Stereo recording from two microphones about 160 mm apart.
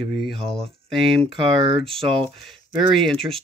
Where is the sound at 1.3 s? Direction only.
30° right (ahead or behind).